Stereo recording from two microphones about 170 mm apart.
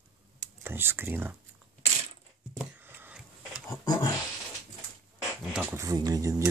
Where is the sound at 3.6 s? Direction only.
20° left (ahead or behind).